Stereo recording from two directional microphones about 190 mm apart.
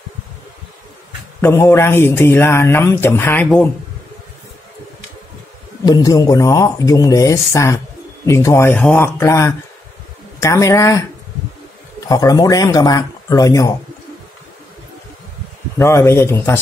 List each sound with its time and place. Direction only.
1.4 s speech: 15° left (ahead or behind)
5.9 s speech: 20° left (ahead or behind)
12.1 s speech: 20° left (ahead or behind)
15.8 s speech: 15° left (ahead or behind)